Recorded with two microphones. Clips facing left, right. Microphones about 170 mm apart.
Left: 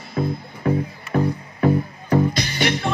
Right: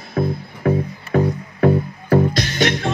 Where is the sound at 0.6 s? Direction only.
60° right (ahead or behind).